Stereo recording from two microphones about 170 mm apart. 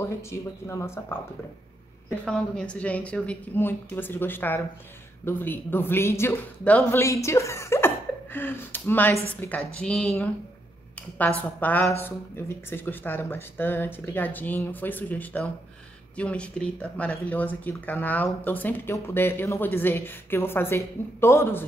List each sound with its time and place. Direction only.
0.0 s speech: 15° left (ahead or behind)
2.2 s speech: 5° left (ahead or behind)